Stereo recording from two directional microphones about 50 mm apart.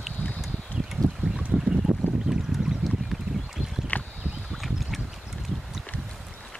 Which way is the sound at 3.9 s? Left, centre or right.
Left.